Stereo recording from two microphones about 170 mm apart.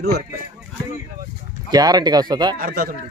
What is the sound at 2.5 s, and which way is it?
Speech, 55° right (ahead or behind).